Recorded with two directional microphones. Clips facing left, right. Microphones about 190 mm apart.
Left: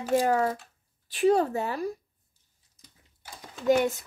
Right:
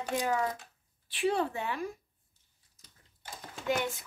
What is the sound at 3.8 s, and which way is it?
Speech, 45° left (ahead or behind).